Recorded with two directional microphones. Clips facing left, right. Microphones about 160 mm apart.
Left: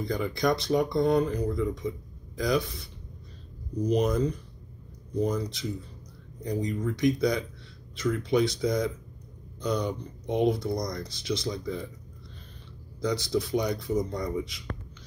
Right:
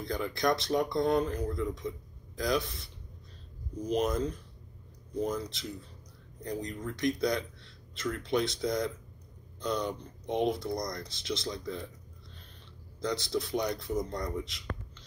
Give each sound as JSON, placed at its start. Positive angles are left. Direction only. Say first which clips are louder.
{"t": 0.0, "sound": "speech", "louder": "left 3 dB", "side_deg": 0}
{"t": 3.9, "sound": "speech", "louder": "left 4 dB", "side_deg": 0}
{"t": 13.0, "sound": "speech", "louder": "left 4 dB", "side_deg": 0}